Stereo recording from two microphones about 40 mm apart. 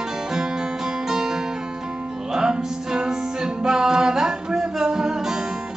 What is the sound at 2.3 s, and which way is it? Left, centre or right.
Music, centre.